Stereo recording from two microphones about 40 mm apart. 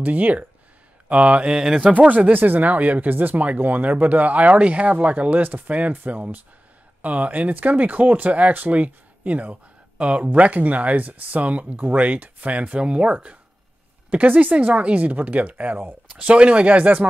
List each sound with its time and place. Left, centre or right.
0.0 s speech: right
1.0 s mantra: right
1.5 s speech: centre
1.8 s speech: right
2.3 s speech: right
16.1 s speech: right